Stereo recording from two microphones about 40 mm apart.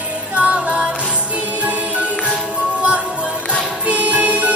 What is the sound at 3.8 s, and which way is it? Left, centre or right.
Music, right.